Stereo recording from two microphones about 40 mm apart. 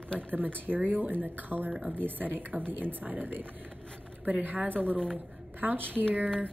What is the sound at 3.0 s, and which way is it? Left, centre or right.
A woman's voice, right.